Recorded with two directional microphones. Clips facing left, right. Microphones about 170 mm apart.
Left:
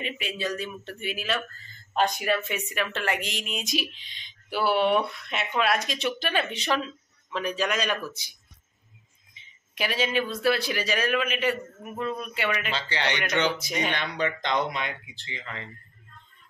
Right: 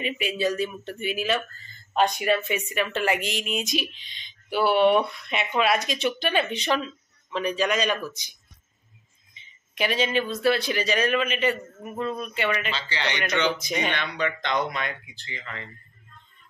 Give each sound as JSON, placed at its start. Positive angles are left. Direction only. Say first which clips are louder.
{"t": 0.0, "sound": "speech", "louder": "right 6 dB", "side_deg": -10}
{"t": 12.7, "sound": "a man's voice", "louder": "left 1 dB", "side_deg": 55}
{"t": 13.5, "sound": "speech", "louder": "right 2 dB", "side_deg": 5}
{"t": 14.2, "sound": "speech", "louder": "even", "side_deg": 25}